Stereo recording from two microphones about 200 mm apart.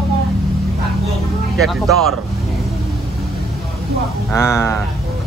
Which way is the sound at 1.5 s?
Centre (ahead or behind).